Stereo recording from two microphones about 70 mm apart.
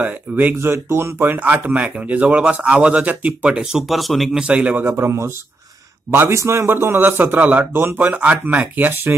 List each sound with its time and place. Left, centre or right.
0.0 s a man's voice: right
0.6 s a man's voice: right
1.2 s a man's voice: right
3.5 s speech: centre
4.4 s a man's voice: centre
4.8 s a man's voice: right